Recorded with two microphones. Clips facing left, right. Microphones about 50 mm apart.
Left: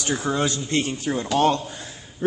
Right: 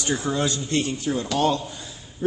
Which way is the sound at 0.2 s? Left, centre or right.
Left.